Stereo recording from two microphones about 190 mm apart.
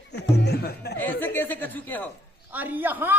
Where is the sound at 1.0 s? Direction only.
10° left (ahead or behind).